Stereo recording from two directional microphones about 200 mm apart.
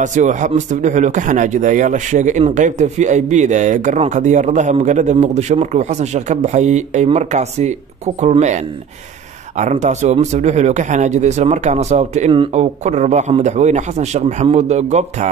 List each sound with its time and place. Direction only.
0.0 s speech: 40° right (ahead or behind)